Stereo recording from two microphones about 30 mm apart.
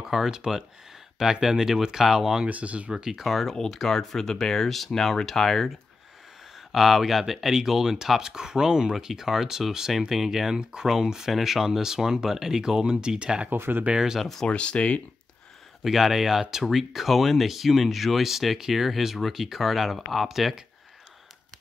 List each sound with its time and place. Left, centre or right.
0.0 s speech: centre
2.4 s speech: right
2.9 s speech: centre
3.2 s speech: centre
3.5 s speech: centre
6.7 s speech: centre; by 8.9 s right
9.0 s speech: centre
12.8 s speech: right
13.9 s speech: right
14.5 s speech: left
15.8 s speech: centre
16.9 s speech: centre